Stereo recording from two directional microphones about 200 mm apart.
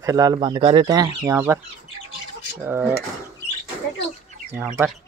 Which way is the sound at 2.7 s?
10° right (ahead or behind).